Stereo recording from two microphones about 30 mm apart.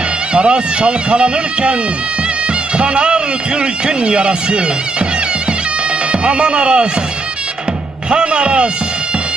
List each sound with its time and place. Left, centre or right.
0.3 s speech: right
2.8 s speech: right
6.2 s speech: right
8.1 s speech: right